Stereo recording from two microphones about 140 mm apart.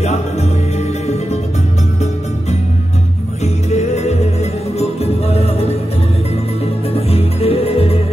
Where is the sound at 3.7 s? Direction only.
50° left (ahead or behind).